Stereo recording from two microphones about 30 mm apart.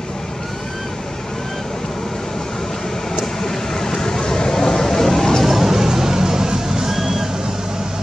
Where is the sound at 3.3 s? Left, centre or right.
Centre.